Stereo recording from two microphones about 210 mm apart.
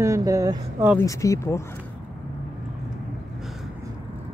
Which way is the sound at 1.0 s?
15° left (ahead or behind).